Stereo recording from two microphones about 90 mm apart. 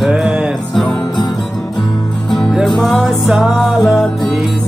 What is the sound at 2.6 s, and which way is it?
Music, centre (ahead or behind).